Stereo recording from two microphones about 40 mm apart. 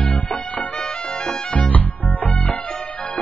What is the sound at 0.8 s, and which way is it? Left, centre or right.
Music, centre.